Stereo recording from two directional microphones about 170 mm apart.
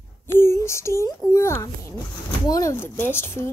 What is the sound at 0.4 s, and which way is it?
A child's voice, 15° left (ahead or behind).